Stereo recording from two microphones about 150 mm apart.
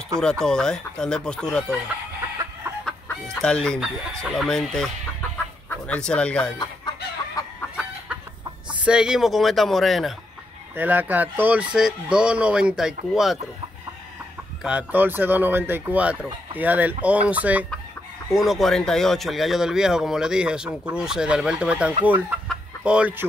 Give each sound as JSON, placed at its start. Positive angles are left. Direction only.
{"t": 0.2, "sound": "speech", "side_deg": 5}
{"t": 2.8, "sound": "chicken", "side_deg": 5}
{"t": 3.8, "sound": "speech", "side_deg": 0}
{"t": 7.4, "sound": "chicken", "side_deg": 25}
{"t": 8.8, "sound": "speech", "side_deg": -5}
{"t": 10.8, "sound": "speech", "side_deg": -10}
{"t": 14.6, "sound": "speech", "side_deg": -5}
{"t": 22.5, "sound": "chicken", "side_deg": -5}